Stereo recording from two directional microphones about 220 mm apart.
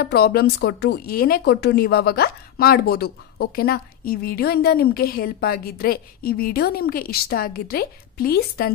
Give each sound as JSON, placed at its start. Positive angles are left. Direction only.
{"t": 0.0, "sound": "speech", "side_deg": 45}